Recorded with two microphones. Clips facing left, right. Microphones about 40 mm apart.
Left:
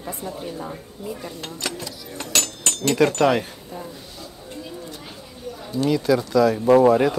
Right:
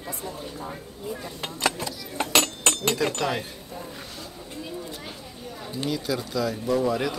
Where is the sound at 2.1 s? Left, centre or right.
Right.